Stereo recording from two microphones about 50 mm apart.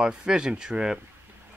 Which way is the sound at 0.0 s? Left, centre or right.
Centre.